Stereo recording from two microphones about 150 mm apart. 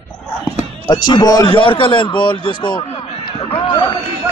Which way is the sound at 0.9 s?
25° left (ahead or behind).